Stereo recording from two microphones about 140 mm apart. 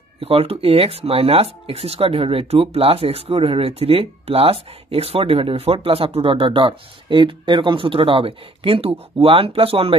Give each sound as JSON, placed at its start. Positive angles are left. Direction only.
{"t": 0.2, "sound": "speech", "side_deg": -45}